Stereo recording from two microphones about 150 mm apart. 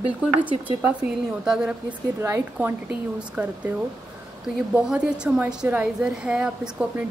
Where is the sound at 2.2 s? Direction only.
15° right (ahead or behind).